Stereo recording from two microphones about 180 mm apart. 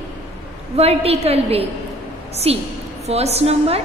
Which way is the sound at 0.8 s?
35° right (ahead or behind).